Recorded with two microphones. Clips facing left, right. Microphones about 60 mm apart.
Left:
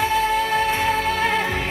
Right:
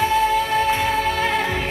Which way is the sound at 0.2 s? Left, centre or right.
Left.